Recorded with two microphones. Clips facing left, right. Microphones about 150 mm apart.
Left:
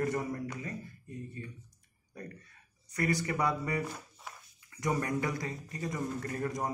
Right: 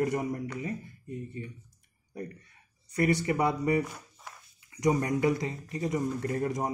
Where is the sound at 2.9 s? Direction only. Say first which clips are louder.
Right 5 dB; 25° right (ahead or behind).